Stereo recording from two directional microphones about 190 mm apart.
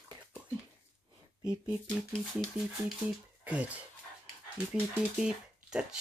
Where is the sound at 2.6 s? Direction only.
10° right (ahead or behind).